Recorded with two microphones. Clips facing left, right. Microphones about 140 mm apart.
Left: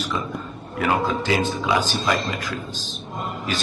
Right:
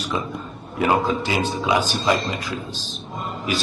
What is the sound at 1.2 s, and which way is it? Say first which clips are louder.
A man's voice: even; 20° right (ahead or behind).